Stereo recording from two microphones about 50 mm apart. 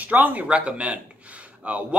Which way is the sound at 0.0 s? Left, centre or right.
Right.